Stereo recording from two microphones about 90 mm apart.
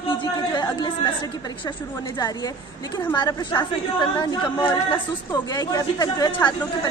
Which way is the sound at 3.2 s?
55° left (ahead or behind).